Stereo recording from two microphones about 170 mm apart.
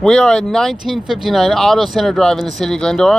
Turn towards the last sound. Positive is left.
turn(degrees=5)  # may be behind; listen again after turning